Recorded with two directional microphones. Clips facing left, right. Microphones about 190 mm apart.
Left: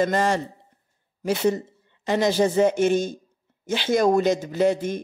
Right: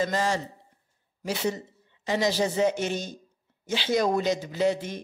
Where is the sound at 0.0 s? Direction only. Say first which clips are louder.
Left 5 dB; 55° left (ahead or behind).